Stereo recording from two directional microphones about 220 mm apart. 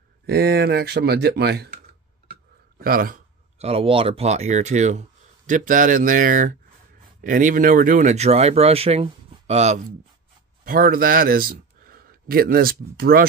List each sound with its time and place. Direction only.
0.3 s speech: 45° right (ahead or behind)
2.8 s speech: 40° right (ahead or behind)
10.6 s a man's voice: 40° right (ahead or behind)